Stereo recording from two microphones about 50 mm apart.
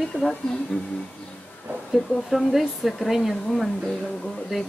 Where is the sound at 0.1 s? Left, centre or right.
Centre.